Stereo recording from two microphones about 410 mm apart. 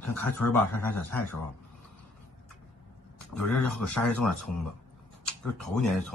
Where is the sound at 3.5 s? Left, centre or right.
Centre.